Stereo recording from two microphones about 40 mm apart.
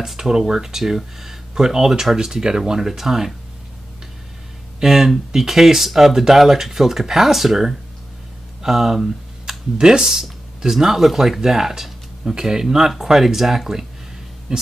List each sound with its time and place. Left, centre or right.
0.0 s speech: centre
4.7 s speech: centre
14.5 s a sound: right